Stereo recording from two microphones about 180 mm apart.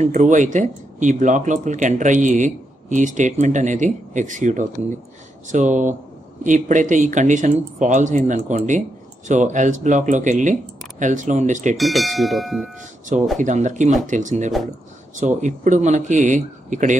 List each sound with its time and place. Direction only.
0.0 s speech: 40° right (ahead or behind)
11.7 s speech: centre (ahead or behind)
13.4 s speech: 45° right (ahead or behind)